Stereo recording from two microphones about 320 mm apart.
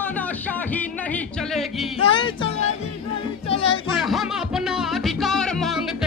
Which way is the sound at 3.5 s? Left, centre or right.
Centre.